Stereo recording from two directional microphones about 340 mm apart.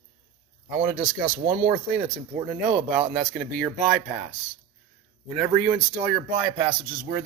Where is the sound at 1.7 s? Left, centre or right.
Centre.